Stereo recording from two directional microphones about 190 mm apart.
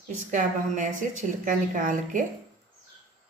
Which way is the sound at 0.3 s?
40° right (ahead or behind).